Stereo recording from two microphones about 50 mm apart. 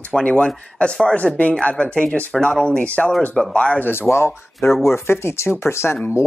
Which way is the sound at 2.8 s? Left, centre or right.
Left.